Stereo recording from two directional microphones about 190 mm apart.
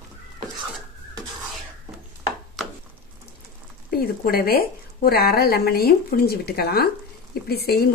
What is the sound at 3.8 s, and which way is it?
Speech, 50° left (ahead or behind).